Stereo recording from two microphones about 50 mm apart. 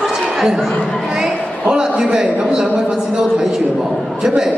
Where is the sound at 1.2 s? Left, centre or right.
Centre.